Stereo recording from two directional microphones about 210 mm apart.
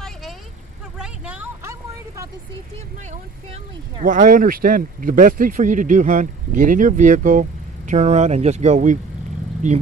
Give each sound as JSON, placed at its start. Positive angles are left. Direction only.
{"t": 0.0, "sound": "vehicle", "side_deg": 0}
{"t": 4.0, "sound": "speech", "side_deg": -40}